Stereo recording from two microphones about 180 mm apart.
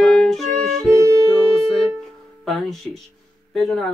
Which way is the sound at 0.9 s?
20° right (ahead or behind).